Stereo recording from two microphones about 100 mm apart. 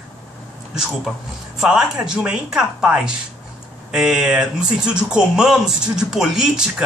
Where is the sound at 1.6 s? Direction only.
5° right (ahead or behind).